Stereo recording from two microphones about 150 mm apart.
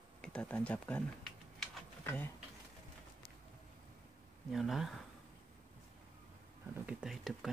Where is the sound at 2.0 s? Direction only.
15° left (ahead or behind).